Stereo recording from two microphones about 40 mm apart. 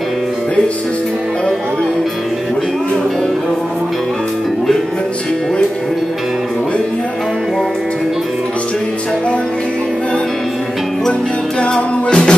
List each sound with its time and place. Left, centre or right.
11.6 s music: left